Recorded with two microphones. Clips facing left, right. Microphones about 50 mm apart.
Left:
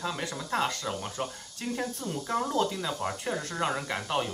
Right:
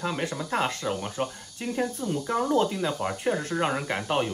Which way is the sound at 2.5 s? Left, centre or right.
Centre.